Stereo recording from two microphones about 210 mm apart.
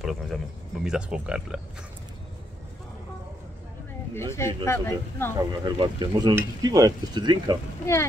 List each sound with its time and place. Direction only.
0.0 s speech: centre (ahead or behind)
4.1 s speech: 10° left (ahead or behind)
5.5 s speech: 20° right (ahead or behind)
7.8 s speech: 15° left (ahead or behind)